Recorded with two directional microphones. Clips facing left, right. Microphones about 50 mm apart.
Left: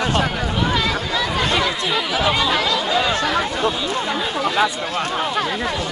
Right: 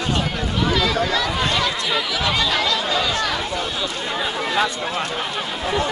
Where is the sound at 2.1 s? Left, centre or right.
Centre.